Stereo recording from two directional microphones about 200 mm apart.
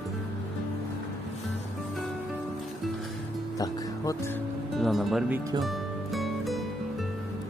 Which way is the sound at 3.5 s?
15° left (ahead or behind).